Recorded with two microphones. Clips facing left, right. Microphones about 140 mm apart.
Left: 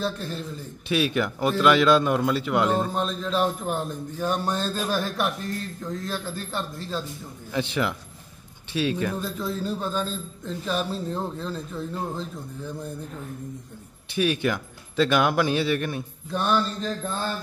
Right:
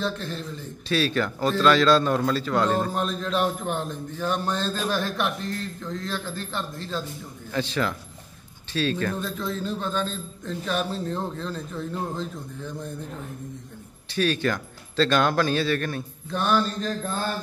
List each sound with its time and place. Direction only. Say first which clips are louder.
0.0 s a man's voice: even; 5° left (ahead or behind)
0.8 s speech: even; 15° left (ahead or behind)
2.7 s a man's voice: even; centre (ahead or behind)
7.5 s a man's voice: even; 15° left (ahead or behind)
14.1 s speech: even; 15° left (ahead or behind)
16.3 s a man's voice: right 1 dB; centre (ahead or behind)